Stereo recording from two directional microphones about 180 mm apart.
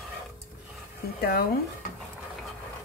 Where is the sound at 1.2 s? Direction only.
55° left (ahead or behind).